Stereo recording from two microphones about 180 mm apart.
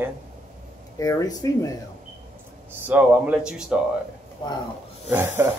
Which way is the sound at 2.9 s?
10° right (ahead or behind).